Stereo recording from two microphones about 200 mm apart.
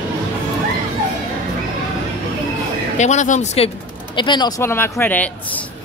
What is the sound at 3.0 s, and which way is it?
Speech, 35° left (ahead or behind).